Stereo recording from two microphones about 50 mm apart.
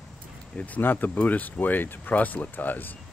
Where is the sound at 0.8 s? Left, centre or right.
Left.